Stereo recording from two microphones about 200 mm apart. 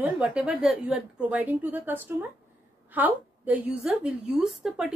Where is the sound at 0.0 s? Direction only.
5° right (ahead or behind).